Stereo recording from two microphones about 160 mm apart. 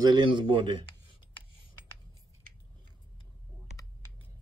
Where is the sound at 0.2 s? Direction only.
30° right (ahead or behind).